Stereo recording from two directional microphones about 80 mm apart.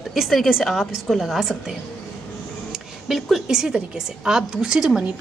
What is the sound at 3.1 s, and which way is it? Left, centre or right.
A woman's voice, centre.